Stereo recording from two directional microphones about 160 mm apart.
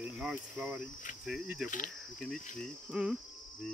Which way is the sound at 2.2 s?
5° left (ahead or behind).